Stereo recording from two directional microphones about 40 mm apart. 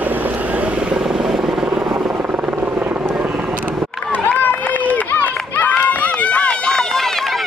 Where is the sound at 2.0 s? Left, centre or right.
Right.